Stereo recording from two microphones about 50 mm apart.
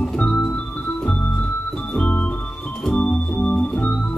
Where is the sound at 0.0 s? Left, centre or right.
Centre.